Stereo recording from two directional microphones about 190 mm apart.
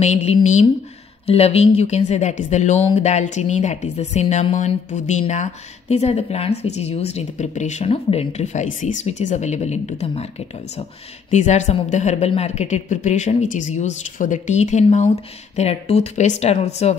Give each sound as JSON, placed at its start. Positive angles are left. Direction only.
{"t": 0.0, "sound": "speech", "side_deg": 35}
{"t": 11.2, "sound": "speech", "side_deg": 40}